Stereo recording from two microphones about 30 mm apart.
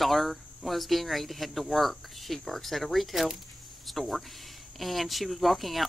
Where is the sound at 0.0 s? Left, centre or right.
Centre.